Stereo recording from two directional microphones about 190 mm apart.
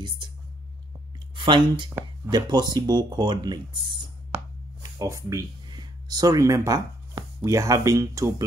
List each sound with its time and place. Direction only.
0.2 s a sound: 25° right (ahead or behind)
1.3 s speech: 25° right (ahead or behind)
4.8 s speech: 15° right (ahead or behind)